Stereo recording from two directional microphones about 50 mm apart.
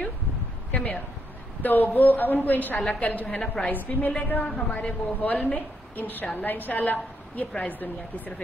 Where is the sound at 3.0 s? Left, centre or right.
Left.